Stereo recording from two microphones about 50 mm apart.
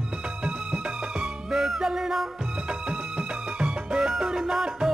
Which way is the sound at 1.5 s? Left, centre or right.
Centre.